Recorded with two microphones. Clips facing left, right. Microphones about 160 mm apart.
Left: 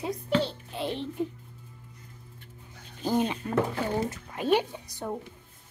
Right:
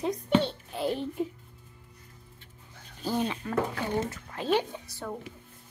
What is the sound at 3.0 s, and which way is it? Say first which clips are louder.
Speech: left 3 dB; 20° left (ahead or behind).